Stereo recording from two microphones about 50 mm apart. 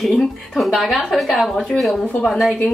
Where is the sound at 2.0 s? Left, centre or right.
Left.